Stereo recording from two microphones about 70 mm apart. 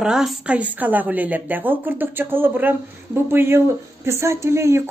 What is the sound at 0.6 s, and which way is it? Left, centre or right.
Speech, right.